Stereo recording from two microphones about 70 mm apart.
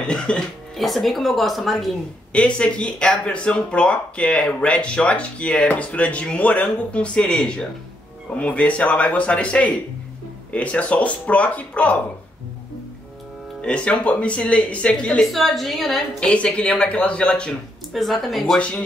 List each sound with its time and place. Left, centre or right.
0.0 s speech: centre
0.7 s a woman's voice: centre
2.3 s speech: centre
13.6 s speech: centre
15.3 s a woman's voice: centre
16.2 s speech: centre
17.9 s a woman's voice: centre